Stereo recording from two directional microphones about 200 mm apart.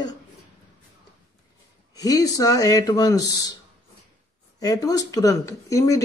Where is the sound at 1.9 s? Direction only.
20° left (ahead or behind).